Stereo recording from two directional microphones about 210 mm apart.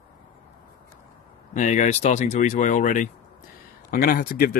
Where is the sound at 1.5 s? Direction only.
35° left (ahead or behind).